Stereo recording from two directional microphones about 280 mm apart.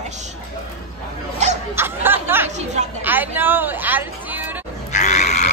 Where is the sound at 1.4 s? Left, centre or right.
Right.